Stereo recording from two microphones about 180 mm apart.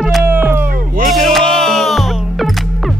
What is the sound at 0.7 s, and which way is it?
Music, 50° right (ahead or behind).